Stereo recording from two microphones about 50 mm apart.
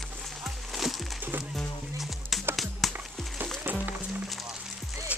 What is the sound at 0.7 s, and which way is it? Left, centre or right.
Music, centre.